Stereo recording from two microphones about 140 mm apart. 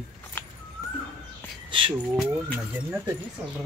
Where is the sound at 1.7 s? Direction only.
35° right (ahead or behind).